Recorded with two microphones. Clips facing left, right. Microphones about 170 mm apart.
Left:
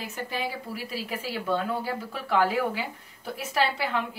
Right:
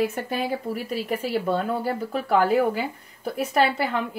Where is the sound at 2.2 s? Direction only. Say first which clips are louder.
Right 4 dB; 45° right (ahead or behind).